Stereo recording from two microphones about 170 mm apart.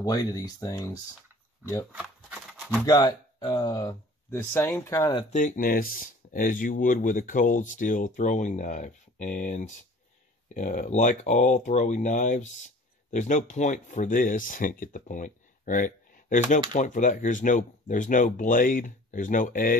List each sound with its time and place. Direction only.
0.0 s speech: 20° left (ahead or behind)
1.9 s a sound: 5° right (ahead or behind)
2.8 s speech: 25° left (ahead or behind)
5.3 s speech: 45° left (ahead or behind)